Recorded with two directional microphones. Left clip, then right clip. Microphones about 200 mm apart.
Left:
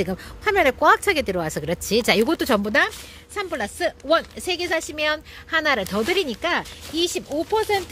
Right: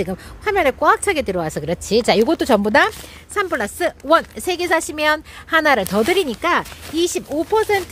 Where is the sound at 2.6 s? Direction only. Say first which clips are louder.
Right 5 dB; 15° right (ahead or behind).